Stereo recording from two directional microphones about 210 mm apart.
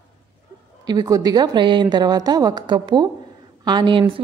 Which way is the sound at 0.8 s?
15° right (ahead or behind).